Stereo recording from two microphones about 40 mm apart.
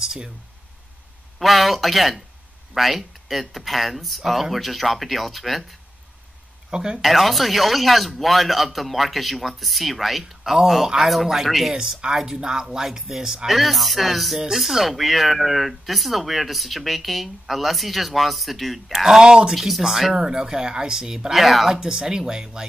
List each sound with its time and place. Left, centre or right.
0.0 s a sound: centre
1.4 s speech: centre
6.7 s speech: right
7.0 s speech: centre
19.2 s speech: centre
19.5 s speech: centre
21.3 s speech: centre
21.7 s speech: centre